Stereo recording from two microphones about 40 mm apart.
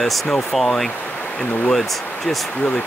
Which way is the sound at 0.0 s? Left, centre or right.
Centre.